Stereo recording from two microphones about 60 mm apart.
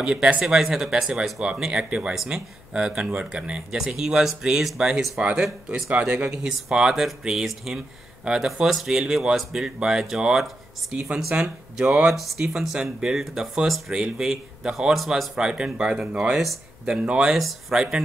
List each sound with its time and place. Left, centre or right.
0.0 s speech: centre
1.7 s speech: centre
5.9 s speech: right; by 15.3 s centre
15.3 s speech: centre